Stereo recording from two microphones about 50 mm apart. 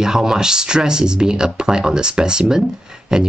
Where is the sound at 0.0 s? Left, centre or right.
Centre.